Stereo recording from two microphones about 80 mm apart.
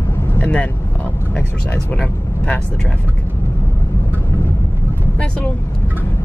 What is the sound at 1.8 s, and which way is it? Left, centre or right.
Speech, left.